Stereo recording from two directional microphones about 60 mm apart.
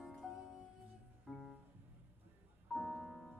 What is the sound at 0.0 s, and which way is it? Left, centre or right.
Music, centre.